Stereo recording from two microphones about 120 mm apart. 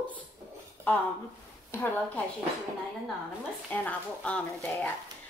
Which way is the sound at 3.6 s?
10° left (ahead or behind).